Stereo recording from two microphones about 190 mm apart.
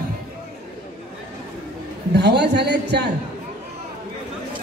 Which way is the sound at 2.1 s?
60° right (ahead or behind).